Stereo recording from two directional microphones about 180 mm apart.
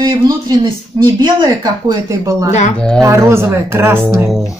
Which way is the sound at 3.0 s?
15° right (ahead or behind).